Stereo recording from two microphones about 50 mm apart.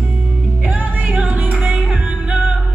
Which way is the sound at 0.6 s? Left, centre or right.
Right.